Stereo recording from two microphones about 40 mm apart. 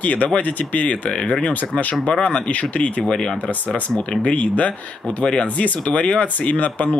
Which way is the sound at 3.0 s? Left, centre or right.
Centre.